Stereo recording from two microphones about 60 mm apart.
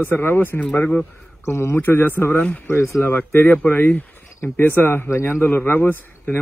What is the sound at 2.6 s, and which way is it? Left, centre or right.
Speech, left.